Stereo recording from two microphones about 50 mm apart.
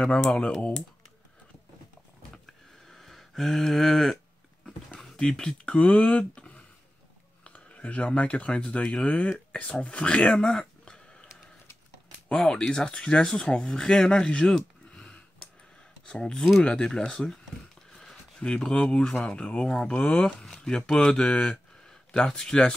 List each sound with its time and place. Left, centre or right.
0.0 s speech: centre
2.9 s a sound: centre
5.0 s speech: centre
12.3 s speech: centre
18.4 s speech: centre
21.5 s a sound: centre